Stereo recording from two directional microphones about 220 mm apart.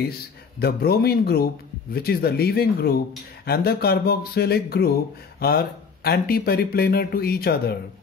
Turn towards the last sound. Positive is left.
turn(degrees=45)  # may be behind; listen again after turning